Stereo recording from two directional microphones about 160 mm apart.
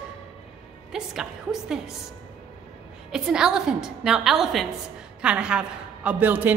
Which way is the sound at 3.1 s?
5° right (ahead or behind).